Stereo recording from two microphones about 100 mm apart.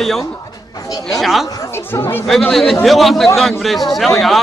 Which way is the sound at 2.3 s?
Centre (ahead or behind).